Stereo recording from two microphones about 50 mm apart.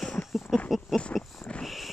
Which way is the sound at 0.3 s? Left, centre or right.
Centre.